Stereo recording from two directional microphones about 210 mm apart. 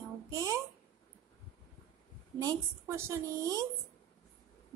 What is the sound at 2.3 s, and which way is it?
A child's voice, 15° right (ahead or behind).